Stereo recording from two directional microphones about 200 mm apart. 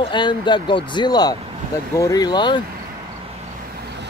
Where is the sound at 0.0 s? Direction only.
20° left (ahead or behind).